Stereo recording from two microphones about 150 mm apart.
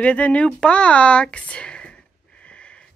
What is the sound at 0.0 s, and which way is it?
Speech, 10° left (ahead or behind).